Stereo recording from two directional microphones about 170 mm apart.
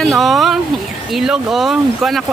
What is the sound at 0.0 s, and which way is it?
Speech, centre (ahead or behind).